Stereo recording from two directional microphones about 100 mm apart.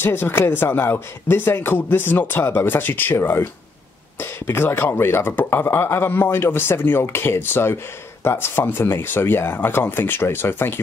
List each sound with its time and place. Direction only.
0.0 s speech: 20° left (ahead or behind)